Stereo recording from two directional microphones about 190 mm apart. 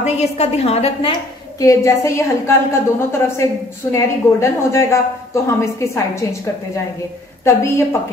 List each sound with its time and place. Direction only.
0.0 s a woman's voice: 35° left (ahead or behind)
1.6 s a woman's voice: 15° left (ahead or behind)
7.4 s a woman's voice: 15° left (ahead or behind)